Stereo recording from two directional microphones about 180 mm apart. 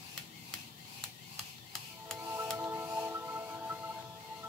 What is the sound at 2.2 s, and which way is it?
Music, 15° right (ahead or behind).